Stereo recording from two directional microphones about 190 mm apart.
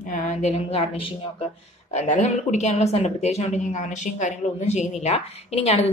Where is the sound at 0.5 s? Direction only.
30° left (ahead or behind).